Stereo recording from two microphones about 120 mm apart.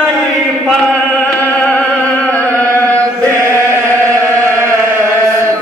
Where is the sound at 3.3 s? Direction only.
25° right (ahead or behind).